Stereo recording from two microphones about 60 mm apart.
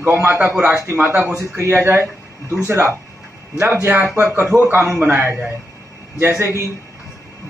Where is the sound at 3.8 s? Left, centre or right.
Right.